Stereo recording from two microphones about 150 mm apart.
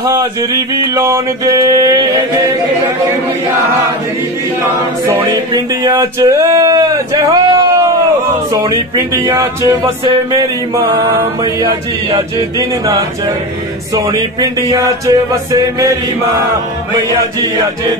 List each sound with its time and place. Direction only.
0.0 s music: 20° right (ahead or behind)
5.0 s music: 25° right (ahead or behind)
12.1 s music: 25° right (ahead or behind)